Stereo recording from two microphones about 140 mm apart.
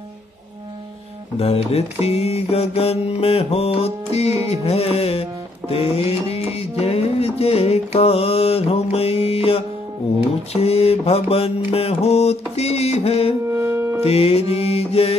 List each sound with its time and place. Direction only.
1.4 s mantra: 45° left (ahead or behind)
5.7 s music: 45° left (ahead or behind)
10.5 s mantra: 45° left (ahead or behind)
13.5 s music: 20° right (ahead or behind)
14.0 s mantra: 45° left (ahead or behind)